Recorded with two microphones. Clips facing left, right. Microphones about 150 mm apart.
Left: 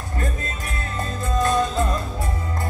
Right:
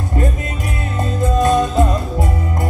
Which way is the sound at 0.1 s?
20° right (ahead or behind).